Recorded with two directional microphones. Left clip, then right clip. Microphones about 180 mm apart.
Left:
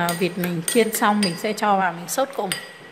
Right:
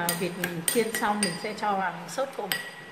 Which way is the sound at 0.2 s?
55° left (ahead or behind).